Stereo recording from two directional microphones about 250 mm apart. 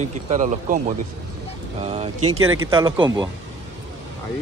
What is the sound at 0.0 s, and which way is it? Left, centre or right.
A man's voice, right.